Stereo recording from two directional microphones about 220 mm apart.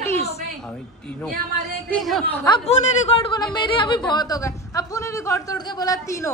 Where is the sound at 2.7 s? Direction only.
25° left (ahead or behind).